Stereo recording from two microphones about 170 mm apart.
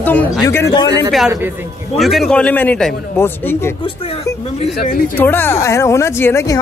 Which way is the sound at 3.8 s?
35° left (ahead or behind).